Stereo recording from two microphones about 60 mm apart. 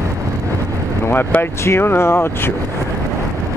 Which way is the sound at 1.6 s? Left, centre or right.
Left.